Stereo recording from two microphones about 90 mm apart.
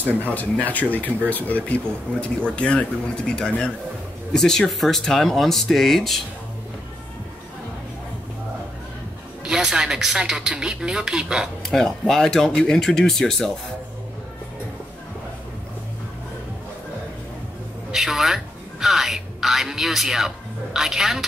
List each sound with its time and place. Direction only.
0.2 s speech: 15° left (ahead or behind)
9.4 s speech: 5° right (ahead or behind)
11.6 s speech: 5° left (ahead or behind)
17.9 s speech: 5° right (ahead or behind)